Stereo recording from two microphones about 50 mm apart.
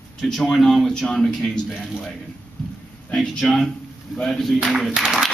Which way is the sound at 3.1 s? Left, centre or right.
Centre.